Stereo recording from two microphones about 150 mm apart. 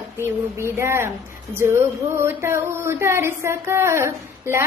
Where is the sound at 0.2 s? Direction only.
15° right (ahead or behind).